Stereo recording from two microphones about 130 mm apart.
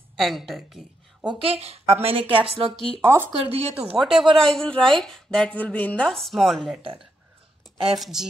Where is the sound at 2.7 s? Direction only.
45° left (ahead or behind).